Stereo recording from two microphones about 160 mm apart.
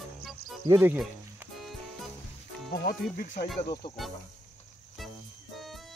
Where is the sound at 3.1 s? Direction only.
65° left (ahead or behind).